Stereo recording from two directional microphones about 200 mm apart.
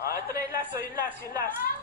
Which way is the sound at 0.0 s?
50° left (ahead or behind).